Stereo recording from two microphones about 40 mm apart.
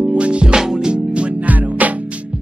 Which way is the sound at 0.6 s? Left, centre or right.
Centre.